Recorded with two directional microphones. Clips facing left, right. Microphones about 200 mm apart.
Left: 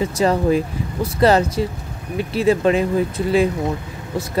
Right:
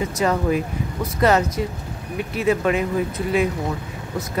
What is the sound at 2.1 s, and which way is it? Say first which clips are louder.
Speech: left 4 dB; 30° left (ahead or behind).